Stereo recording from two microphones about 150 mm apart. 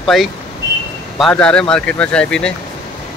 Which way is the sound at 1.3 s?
5° left (ahead or behind).